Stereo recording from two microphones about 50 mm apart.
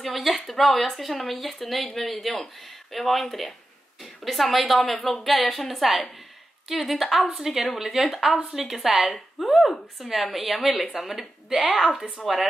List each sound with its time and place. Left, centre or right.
0.0 s a woman's voice: centre
11.8 s speech: centre